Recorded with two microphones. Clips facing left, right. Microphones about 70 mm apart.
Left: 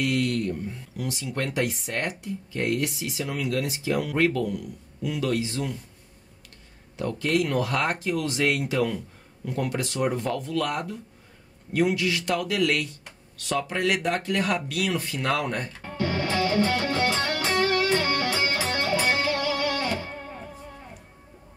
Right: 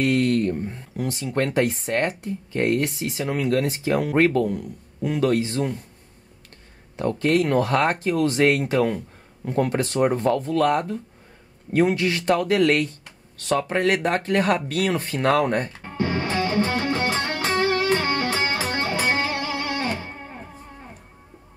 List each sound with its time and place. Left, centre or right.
0.0 s speech: right
7.0 s speech: right
15.8 s music: right